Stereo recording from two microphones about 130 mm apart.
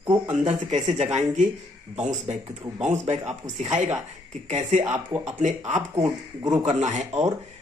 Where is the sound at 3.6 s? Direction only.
65° right (ahead or behind).